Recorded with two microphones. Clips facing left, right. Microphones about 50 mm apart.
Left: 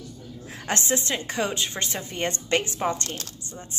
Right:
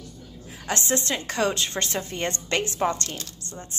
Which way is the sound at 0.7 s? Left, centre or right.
Left.